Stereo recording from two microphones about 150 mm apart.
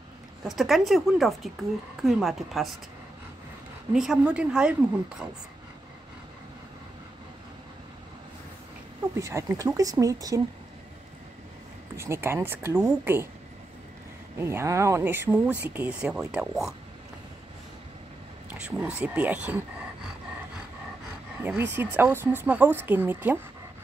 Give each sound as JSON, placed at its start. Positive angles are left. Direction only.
{"t": 0.4, "sound": "a woman's voice", "side_deg": 0}
{"t": 3.9, "sound": "a woman's voice", "side_deg": -5}
{"t": 9.1, "sound": "speech", "side_deg": -20}
{"t": 12.0, "sound": "speech", "side_deg": -15}
{"t": 14.4, "sound": "speech", "side_deg": -20}
{"t": 18.5, "sound": "speech", "side_deg": -10}
{"t": 21.4, "sound": "speech", "side_deg": -15}